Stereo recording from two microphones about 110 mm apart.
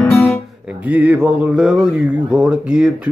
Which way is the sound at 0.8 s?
15° right (ahead or behind).